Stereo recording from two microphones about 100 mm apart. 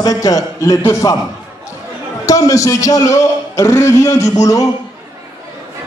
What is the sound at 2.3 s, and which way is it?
A man's voice, 35° left (ahead or behind).